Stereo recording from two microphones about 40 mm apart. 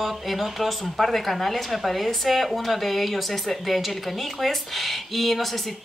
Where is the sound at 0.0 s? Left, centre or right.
Centre.